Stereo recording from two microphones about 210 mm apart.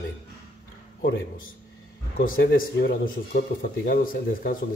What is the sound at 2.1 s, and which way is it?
Speech, 45° left (ahead or behind).